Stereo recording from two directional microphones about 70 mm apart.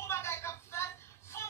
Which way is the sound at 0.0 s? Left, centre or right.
Left.